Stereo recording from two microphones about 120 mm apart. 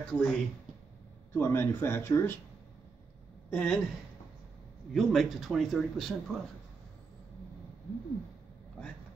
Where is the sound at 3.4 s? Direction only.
10° left (ahead or behind).